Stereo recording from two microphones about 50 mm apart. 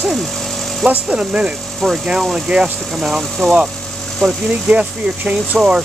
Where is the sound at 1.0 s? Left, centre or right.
Right.